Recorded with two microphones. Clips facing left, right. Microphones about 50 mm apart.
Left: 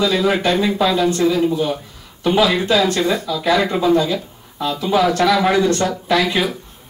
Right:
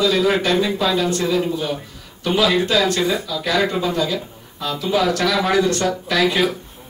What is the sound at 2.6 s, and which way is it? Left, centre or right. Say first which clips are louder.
Speech: left 2 dB; left.